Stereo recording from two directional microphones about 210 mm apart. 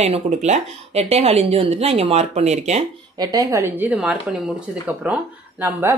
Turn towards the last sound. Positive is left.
turn(degrees=-10)  # may be behind; listen again after turning